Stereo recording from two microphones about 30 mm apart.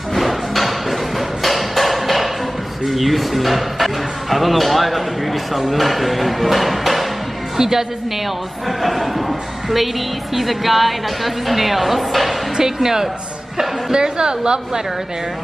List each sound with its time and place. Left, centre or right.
0.1 s a sound: centre
2.8 s speech: centre
7.5 s a woman's voice: centre
8.6 s speech: centre
12.5 s speech: centre
13.9 s a woman's voice: right